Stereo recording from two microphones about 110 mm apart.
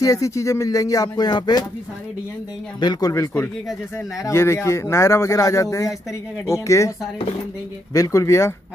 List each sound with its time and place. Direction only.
0.0 s speech: 30° left (ahead or behind)
2.8 s speech: 35° left (ahead or behind)
7.9 s speech: 30° left (ahead or behind)